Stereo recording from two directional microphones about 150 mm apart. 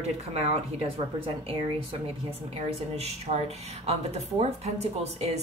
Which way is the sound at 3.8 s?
45° right (ahead or behind).